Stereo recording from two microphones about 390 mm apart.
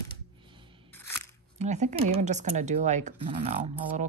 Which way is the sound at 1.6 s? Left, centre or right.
Centre.